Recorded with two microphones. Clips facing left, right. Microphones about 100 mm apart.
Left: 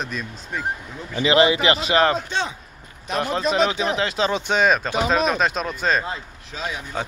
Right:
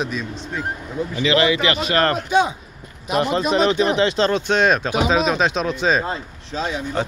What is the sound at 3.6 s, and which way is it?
Speech, 10° left (ahead or behind).